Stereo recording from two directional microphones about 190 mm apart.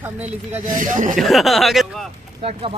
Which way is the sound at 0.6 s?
45° right (ahead or behind).